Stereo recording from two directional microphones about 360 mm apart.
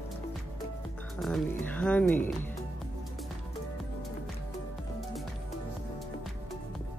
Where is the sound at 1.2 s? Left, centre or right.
Centre.